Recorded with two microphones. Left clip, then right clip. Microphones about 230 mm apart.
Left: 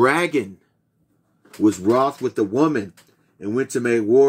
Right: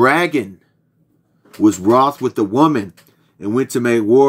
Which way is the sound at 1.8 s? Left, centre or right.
Centre.